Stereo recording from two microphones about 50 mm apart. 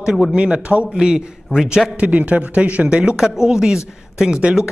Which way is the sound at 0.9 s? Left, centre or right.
Centre.